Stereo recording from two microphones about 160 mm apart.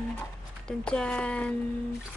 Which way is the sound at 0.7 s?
5° left (ahead or behind).